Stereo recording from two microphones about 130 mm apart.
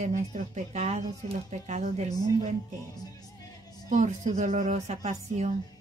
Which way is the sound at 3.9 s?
70° right (ahead or behind).